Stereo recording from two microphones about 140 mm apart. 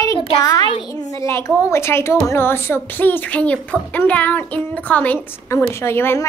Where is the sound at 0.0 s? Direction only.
25° left (ahead or behind).